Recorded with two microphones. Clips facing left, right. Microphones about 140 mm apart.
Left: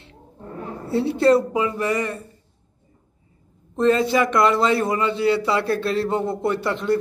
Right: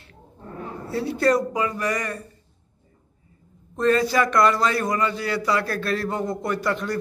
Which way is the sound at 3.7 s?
20° left (ahead or behind).